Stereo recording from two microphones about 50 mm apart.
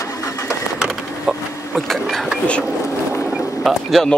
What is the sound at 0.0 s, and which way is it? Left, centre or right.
Printer, left.